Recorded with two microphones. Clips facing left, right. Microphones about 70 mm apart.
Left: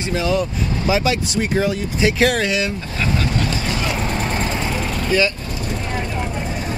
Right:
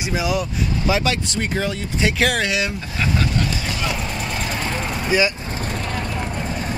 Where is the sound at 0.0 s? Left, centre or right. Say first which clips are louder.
Left 2 dB; centre.